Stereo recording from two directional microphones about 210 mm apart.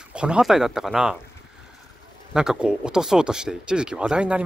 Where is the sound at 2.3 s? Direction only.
5° right (ahead or behind).